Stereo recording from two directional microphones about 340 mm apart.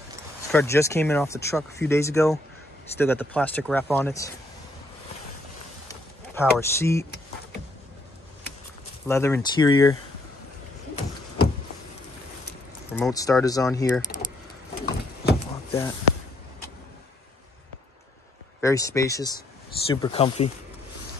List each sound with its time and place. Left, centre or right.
0.5 s speech: centre
5.9 s a sound: centre
9.0 s speech: centre
12.9 s speech: centre
14.8 s a sound: left
18.6 s speech: centre